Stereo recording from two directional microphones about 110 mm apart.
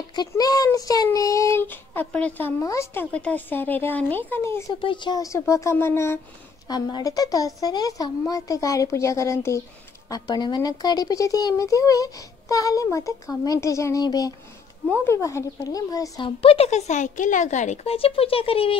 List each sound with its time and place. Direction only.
0.1 s a child's voice: 40° left (ahead or behind); by 2.5 s 15° left (ahead or behind)
2.6 s speech: 30° left (ahead or behind)
4.8 s speech: 45° left (ahead or behind)
5.5 s a child's voice: 25° left (ahead or behind)
6.7 s a child's voice: 35° left (ahead or behind)
16.2 s a woman's voice: 60° left (ahead or behind)